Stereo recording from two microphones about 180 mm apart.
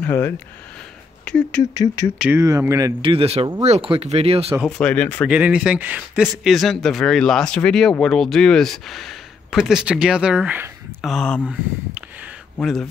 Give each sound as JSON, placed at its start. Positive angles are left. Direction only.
{"t": 0.0, "sound": "speech", "side_deg": 10}
{"t": 1.6, "sound": "a sound", "side_deg": 20}
{"t": 2.1, "sound": "speech", "side_deg": -5}
{"t": 2.4, "sound": "speech", "side_deg": -20}
{"t": 3.0, "sound": "speech", "side_deg": -30}
{"t": 4.6, "sound": "speech", "side_deg": 5}
{"t": 5.3, "sound": "speech", "side_deg": -5}
{"t": 11.1, "sound": "speech", "side_deg": 5}
{"t": 11.4, "sound": "speech", "side_deg": -5}